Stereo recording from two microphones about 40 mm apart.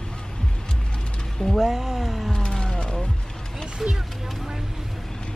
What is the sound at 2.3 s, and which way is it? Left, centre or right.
Vehicle, left.